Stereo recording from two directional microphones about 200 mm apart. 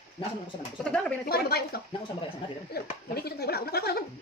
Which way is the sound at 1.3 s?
50° left (ahead or behind).